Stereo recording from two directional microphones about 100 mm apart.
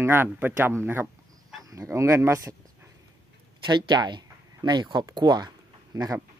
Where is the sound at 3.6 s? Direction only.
45° right (ahead or behind).